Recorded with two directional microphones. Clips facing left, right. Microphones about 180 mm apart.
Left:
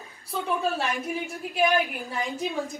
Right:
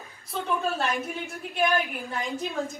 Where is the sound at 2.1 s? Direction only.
Centre (ahead or behind).